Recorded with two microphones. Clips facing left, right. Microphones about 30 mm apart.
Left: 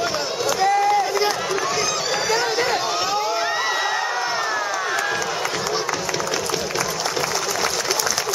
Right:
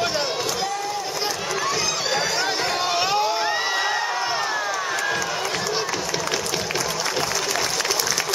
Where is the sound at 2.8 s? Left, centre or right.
Centre.